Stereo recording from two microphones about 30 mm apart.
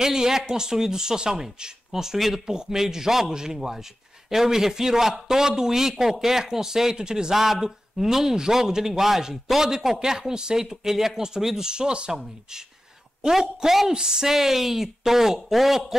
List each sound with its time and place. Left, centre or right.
0.0 s speech: centre
2.4 s speech: right
7.3 s speech: centre
11.7 s speech: right
13.3 s speech: centre